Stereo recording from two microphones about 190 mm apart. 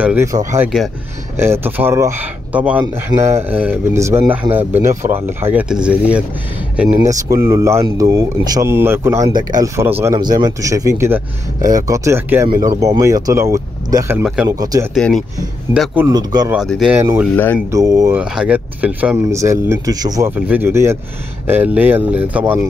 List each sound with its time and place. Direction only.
0.0 s speech: 10° right (ahead or behind)
7.0 s speech: 15° right (ahead or behind)
14.5 s speech: 20° right (ahead or behind)
15.0 s speech: 5° left (ahead or behind)
15.7 s speech: 5° right (ahead or behind)
16.1 s speech: 20° right (ahead or behind)
16.5 s speech: centre (ahead or behind)
16.9 s speech: 10° right (ahead or behind)
18.1 s speech: 5° right (ahead or behind)